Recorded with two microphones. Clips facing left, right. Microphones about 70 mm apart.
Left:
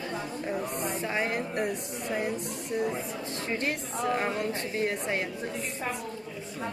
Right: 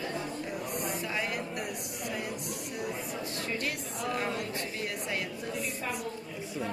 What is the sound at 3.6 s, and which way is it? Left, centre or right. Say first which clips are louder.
Speech: left 4 dB; left.